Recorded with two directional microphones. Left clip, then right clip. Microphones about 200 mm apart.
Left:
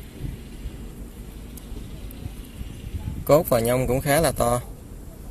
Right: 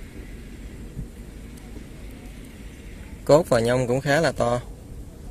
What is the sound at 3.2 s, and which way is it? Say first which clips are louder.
Speech: right 1 dB; 10° right (ahead or behind).